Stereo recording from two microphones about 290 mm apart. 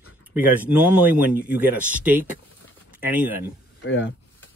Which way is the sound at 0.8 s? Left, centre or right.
Centre.